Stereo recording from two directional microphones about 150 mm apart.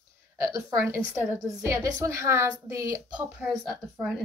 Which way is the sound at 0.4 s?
15° right (ahead or behind).